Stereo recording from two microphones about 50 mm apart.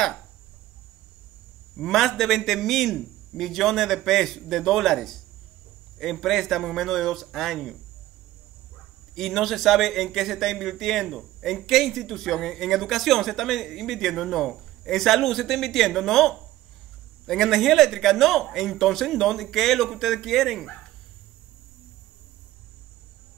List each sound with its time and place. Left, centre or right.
1.8 s speech: centre
9.1 s speech: centre